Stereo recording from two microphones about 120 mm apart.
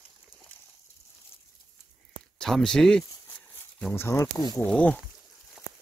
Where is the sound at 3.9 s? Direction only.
20° left (ahead or behind).